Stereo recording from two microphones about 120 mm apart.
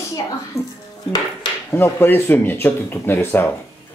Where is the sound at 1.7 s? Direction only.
20° left (ahead or behind).